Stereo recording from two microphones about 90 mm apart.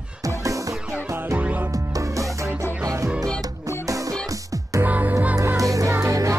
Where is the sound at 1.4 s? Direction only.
15° right (ahead or behind).